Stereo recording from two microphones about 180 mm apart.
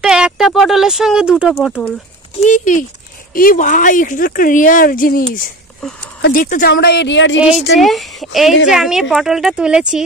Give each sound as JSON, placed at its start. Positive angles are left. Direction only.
{"t": 0.0, "sound": "speech", "side_deg": -5}
{"t": 2.4, "sound": "speech", "side_deg": 45}
{"t": 7.7, "sound": "speech", "side_deg": 0}